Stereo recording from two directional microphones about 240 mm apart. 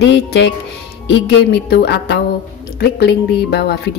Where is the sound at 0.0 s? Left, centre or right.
Left.